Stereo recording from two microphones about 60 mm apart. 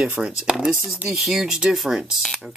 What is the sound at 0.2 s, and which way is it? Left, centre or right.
Speech, centre.